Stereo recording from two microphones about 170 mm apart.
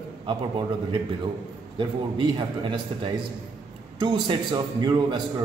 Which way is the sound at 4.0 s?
25° right (ahead or behind).